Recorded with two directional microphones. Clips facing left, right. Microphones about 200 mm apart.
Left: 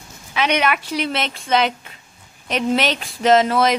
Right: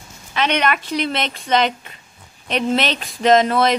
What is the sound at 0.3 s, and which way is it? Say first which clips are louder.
A woman's voice: even; 5° left (ahead or behind).